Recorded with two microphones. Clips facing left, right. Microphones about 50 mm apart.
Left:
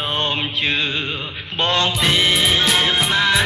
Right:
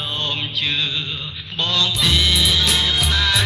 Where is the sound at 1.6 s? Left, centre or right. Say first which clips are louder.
Left 2 dB; left.